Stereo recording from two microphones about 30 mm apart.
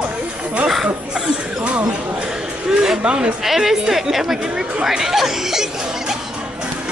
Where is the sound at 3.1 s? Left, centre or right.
Right.